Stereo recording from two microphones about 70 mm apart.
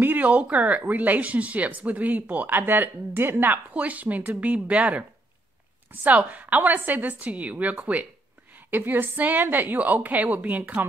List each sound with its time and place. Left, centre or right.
0.0 s speech: right
3.7 s speech: right
5.9 s speech: right